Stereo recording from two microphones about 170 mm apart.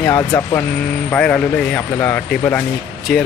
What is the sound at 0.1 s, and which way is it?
Speech, 20° left (ahead or behind).